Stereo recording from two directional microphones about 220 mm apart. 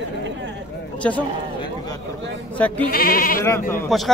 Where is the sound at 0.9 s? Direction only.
5° left (ahead or behind).